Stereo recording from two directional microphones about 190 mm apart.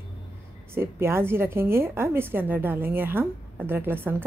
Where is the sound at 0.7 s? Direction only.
15° right (ahead or behind).